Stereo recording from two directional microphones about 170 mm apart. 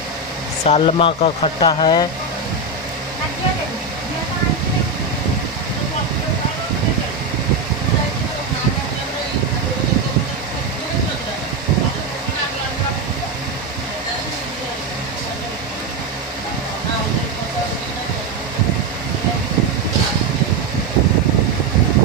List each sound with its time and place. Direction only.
0.7 s speech: 35° left (ahead or behind)